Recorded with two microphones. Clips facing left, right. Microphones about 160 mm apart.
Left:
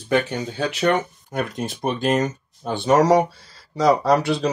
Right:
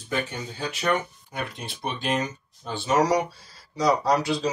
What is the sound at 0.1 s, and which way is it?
Speech, 75° left (ahead or behind).